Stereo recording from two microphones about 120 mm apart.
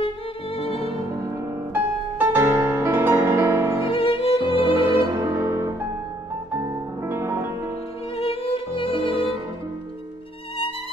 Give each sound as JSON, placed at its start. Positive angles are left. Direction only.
{"t": 0.6, "sound": "music", "side_deg": 55}
{"t": 1.7, "sound": "music", "side_deg": -20}
{"t": 3.8, "sound": "violin", "side_deg": 50}
{"t": 5.1, "sound": "music", "side_deg": -25}
{"t": 8.2, "sound": "violin", "side_deg": 50}